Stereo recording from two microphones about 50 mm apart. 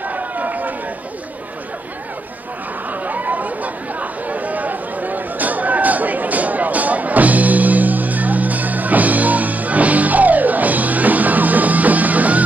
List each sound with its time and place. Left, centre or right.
0.0 s run: right
2.9 s chatter: right